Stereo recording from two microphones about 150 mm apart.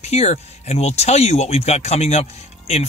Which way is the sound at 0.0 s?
50° left (ahead or behind).